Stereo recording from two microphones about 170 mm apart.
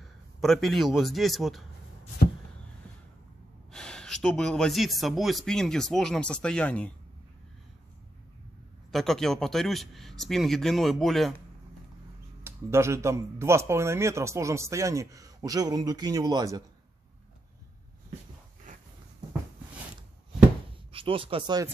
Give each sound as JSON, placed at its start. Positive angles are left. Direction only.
{"t": 0.0, "sound": "a man's voice", "side_deg": 0}
{"t": 3.7, "sound": "speech", "side_deg": 5}
{"t": 8.9, "sound": "speech", "side_deg": 0}
{"t": 12.4, "sound": "speech", "side_deg": -15}
{"t": 18.7, "sound": "a sound", "side_deg": -50}
{"t": 20.9, "sound": "speech", "side_deg": -30}